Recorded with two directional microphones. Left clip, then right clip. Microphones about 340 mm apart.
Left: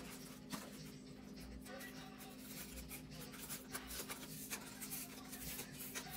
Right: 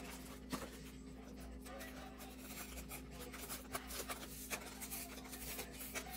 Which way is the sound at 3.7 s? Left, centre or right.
Centre.